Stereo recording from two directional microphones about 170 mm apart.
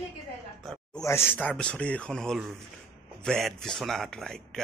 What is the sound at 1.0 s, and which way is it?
Speech, 15° left (ahead or behind).